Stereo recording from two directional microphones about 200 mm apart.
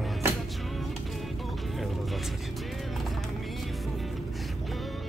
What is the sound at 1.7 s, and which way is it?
Music, centre (ahead or behind).